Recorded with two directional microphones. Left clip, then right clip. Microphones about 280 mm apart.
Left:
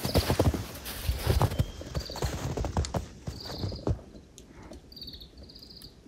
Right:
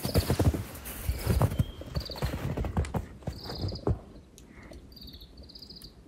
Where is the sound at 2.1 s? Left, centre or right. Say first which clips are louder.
Left 2 dB; centre.